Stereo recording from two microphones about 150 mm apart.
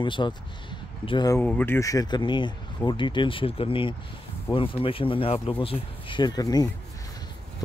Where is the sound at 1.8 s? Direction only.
25° left (ahead or behind).